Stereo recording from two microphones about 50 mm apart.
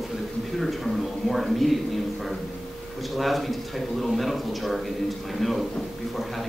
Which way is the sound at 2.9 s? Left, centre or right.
Centre.